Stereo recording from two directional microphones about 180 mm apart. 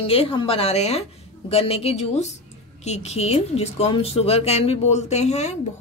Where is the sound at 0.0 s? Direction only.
30° left (ahead or behind).